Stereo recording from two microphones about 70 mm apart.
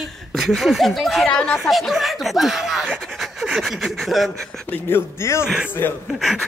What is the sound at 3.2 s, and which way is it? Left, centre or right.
Pant, centre.